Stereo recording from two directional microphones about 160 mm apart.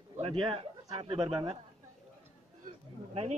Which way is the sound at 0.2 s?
35° right (ahead or behind).